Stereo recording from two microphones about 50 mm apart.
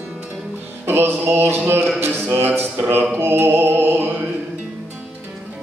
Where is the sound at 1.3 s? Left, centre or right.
Right.